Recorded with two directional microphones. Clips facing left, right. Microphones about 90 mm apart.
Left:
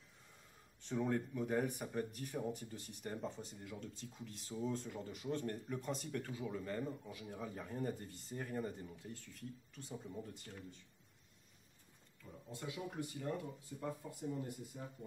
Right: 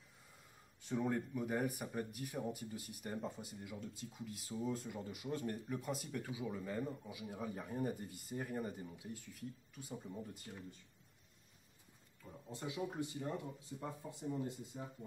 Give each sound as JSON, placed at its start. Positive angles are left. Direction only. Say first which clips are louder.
{"t": 0.8, "sound": "speech", "louder": "even", "side_deg": -5}
{"t": 12.2, "sound": "speech", "louder": "right 1 dB", "side_deg": -20}